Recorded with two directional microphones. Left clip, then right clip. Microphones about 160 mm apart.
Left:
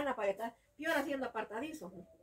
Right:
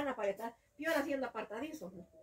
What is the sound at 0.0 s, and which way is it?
A woman's voice, 25° left (ahead or behind).